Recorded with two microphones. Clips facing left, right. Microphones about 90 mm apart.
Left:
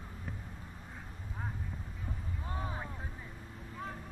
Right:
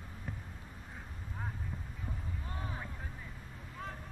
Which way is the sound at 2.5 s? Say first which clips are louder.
Left 4 dB; 20° left (ahead or behind).